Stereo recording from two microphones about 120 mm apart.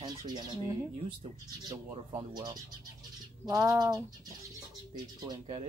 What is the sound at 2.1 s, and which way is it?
Speech, 35° right (ahead or behind).